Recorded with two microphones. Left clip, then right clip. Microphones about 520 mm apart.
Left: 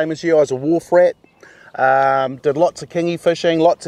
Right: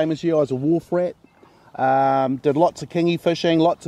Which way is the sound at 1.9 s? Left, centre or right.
Left.